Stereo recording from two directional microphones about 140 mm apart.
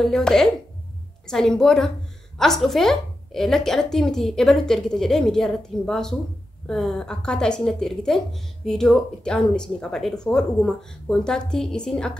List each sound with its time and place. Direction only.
0.0 s speech: centre (ahead or behind)